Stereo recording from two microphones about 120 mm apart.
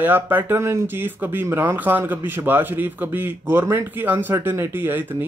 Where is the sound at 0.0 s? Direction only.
15° right (ahead or behind).